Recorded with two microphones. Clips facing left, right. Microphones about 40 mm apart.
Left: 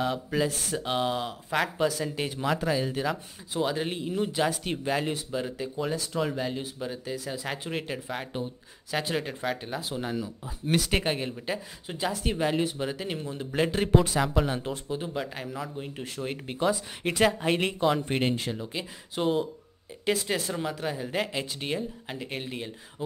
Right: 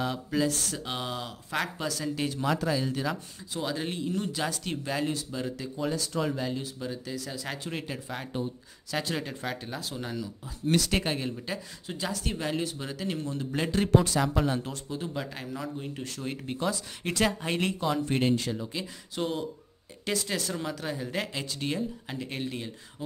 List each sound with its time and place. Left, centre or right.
0.0 s speech: centre
7.9 s speech: centre